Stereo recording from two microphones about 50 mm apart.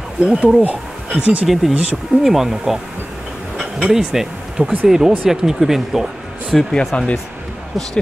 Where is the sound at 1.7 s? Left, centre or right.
Right.